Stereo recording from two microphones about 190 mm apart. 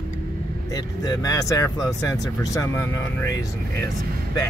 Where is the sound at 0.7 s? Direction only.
20° left (ahead or behind).